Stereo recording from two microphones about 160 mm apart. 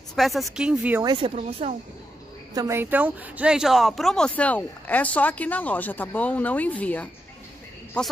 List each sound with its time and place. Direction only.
0.1 s speech: centre (ahead or behind)
1.0 s speech: 30° right (ahead or behind)
2.5 s speech: 20° right (ahead or behind); by 8.1 s 5° left (ahead or behind)